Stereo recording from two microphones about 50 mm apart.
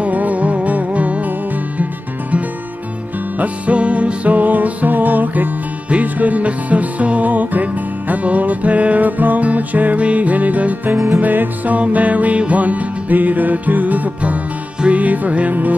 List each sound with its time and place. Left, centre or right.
0.0 s music: right
3.3 s music: right